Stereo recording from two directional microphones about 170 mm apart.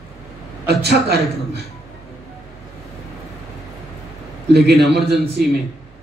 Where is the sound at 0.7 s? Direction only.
70° right (ahead or behind).